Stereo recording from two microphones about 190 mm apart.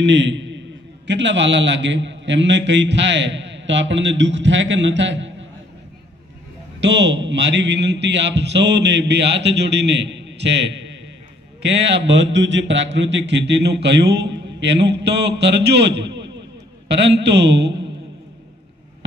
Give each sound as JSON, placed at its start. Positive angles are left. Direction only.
{"t": 0.0, "sound": "a man's voice", "side_deg": -70}
{"t": 6.8, "sound": "a man's voice", "side_deg": -70}